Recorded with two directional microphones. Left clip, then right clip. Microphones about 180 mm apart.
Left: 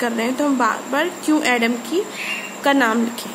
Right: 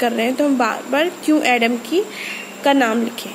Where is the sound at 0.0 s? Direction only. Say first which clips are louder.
Right 3 dB; 15° right (ahead or behind).